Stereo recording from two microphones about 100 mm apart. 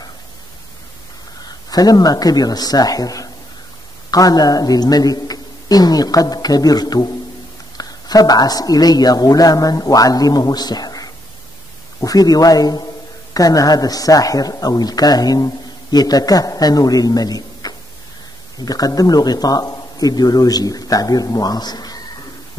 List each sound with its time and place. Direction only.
1.7 s a man's voice: 40° left (ahead or behind)